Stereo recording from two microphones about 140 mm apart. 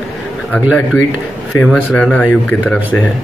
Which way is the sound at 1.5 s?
5° left (ahead or behind).